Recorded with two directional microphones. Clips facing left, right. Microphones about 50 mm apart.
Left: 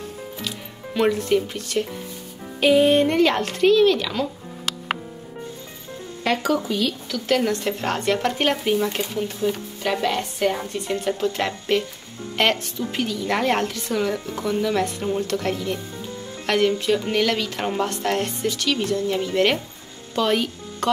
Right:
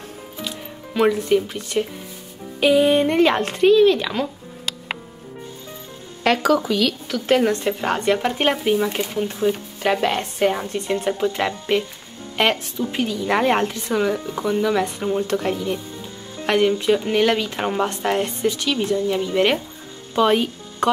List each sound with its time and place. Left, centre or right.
0.9 s speech: centre
2.6 s music: centre
3.1 s speech: right
6.2 s speech: right
7.1 s speech: right
7.3 s speech: right
7.8 s speech: centre
9.1 s speech: right